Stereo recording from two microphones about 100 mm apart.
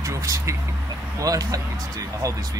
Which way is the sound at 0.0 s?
35° right (ahead or behind).